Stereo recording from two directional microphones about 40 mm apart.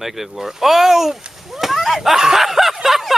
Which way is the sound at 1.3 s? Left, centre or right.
Centre.